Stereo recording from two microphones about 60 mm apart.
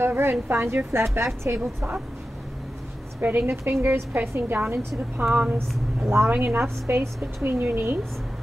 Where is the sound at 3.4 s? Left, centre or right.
Right.